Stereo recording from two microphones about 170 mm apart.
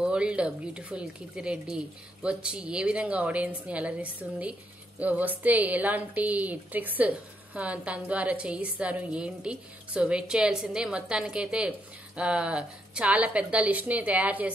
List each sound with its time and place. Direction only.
0.0 s a woman's voice: 5° right (ahead or behind)